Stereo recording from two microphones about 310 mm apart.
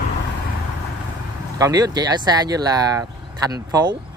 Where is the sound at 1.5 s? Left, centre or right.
Centre.